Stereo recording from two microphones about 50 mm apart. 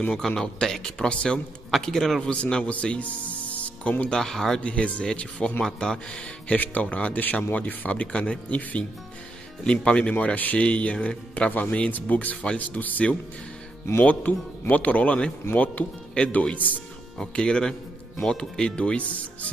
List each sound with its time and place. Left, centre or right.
0.1 s speech: centre
1.7 s speech: centre
2.2 s speech: centre
4.2 s speech: centre
4.6 s speech: left
6.5 s speech: left
14.3 s speech: left
17.2 s speech: centre